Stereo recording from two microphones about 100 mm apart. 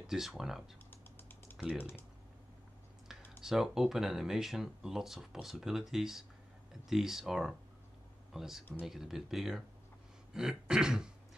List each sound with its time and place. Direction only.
0.0 s speech: 5° right (ahead or behind)
0.8 s typing: 20° left (ahead or behind)
1.6 s throat clearing: 15° right (ahead or behind)
3.4 s speech: 5° right (ahead or behind)
10.3 s throat clearing: 5° right (ahead or behind)